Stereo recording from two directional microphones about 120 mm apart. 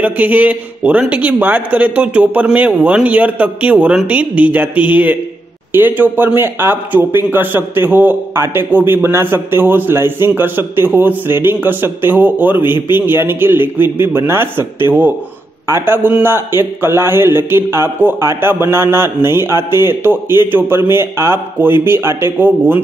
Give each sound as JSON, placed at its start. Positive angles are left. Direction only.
{"t": 0.0, "sound": "a man's voice", "side_deg": -15}